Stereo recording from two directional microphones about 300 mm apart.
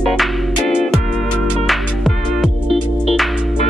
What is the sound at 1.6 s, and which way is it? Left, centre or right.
Music, centre.